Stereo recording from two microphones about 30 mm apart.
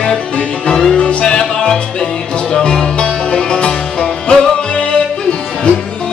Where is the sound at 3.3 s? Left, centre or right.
Left.